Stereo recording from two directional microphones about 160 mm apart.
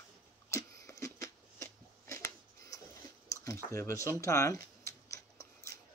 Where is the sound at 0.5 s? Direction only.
15° left (ahead or behind).